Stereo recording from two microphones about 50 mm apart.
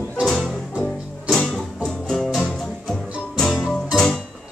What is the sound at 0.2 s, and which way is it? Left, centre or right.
Music, centre.